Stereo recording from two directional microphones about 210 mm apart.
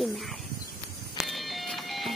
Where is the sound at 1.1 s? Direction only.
Centre (ahead or behind).